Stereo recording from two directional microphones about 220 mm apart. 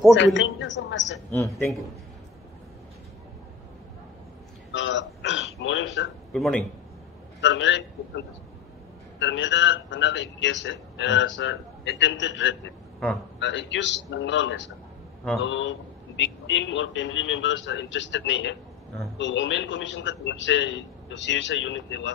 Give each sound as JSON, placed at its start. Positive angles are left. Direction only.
{"t": 0.1, "sound": "a man's voice", "side_deg": 55}
{"t": 1.1, "sound": "speech", "side_deg": 10}
{"t": 4.7, "sound": "a sound", "side_deg": 55}
{"t": 6.3, "sound": "speech", "side_deg": 0}
{"t": 7.4, "sound": "a man's voice", "side_deg": 55}
{"t": 9.2, "sound": "a man's voice", "side_deg": 55}